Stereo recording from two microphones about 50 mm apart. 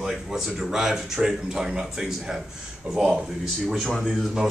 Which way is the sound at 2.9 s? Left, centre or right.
Right.